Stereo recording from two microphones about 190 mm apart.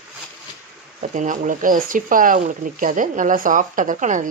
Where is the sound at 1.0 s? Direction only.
40° right (ahead or behind).